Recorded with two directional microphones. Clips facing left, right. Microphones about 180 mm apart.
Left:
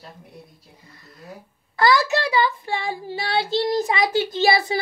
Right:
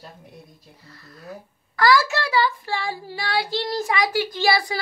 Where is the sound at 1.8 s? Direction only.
20° left (ahead or behind).